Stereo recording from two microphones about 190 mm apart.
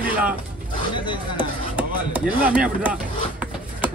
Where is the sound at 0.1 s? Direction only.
10° right (ahead or behind).